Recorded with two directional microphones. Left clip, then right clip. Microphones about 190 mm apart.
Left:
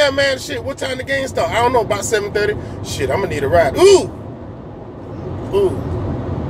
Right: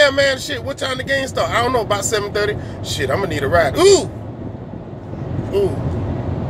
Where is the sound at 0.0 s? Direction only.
5° right (ahead or behind).